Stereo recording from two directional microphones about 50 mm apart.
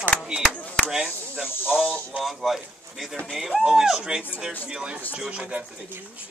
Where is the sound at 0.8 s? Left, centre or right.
Centre.